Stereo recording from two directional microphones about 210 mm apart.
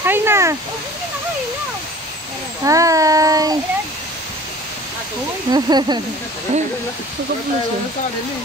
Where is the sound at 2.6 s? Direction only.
15° right (ahead or behind).